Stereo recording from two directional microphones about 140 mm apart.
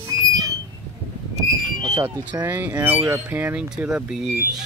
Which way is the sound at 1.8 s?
30° right (ahead or behind).